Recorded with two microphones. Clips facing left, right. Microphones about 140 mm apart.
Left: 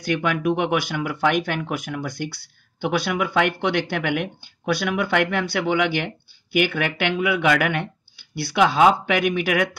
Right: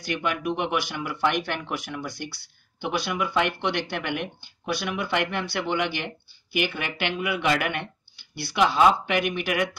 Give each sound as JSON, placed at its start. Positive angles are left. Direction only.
{"t": 0.0, "sound": "speech", "side_deg": 50}